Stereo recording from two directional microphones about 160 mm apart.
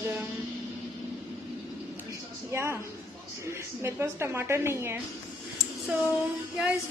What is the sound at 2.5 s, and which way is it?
A woman's voice, 15° right (ahead or behind).